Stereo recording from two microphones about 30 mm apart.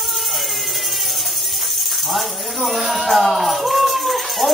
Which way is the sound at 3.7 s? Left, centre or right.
Centre.